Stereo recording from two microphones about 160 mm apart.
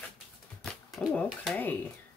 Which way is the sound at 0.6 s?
5° left (ahead or behind).